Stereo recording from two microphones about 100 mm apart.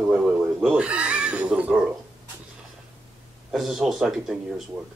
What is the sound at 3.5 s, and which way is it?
Speech, 5° right (ahead or behind).